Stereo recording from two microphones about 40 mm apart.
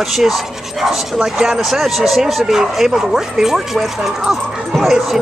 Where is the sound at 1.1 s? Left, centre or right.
Centre.